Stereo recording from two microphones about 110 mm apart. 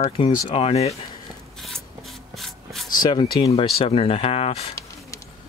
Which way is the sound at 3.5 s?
65° left (ahead or behind).